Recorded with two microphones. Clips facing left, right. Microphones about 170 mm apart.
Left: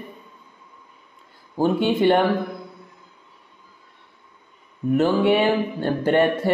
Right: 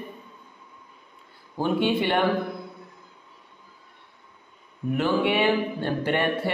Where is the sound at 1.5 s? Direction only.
45° left (ahead or behind).